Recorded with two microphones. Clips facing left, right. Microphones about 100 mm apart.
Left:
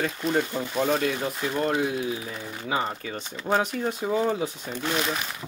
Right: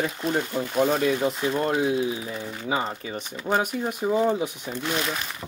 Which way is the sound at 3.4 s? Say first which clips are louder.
Even; 10° right (ahead or behind).